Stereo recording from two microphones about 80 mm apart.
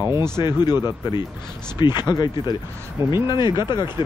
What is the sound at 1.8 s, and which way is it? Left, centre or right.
Speech, left.